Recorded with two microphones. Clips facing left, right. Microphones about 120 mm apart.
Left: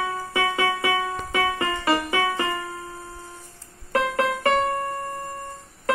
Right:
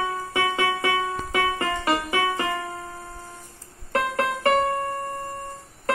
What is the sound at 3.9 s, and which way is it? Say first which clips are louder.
Music: left 2 dB; 15° left (ahead or behind).